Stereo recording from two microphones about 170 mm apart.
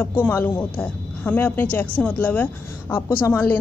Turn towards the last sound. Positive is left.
turn(degrees=15)  # may be behind; listen again after turning